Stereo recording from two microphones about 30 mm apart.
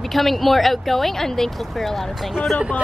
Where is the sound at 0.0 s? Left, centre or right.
Centre.